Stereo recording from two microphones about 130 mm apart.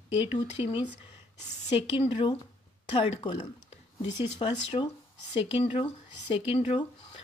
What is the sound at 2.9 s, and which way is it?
Speech, 40° left (ahead or behind).